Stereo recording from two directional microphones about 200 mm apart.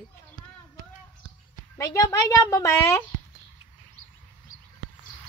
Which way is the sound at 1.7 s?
15° left (ahead or behind).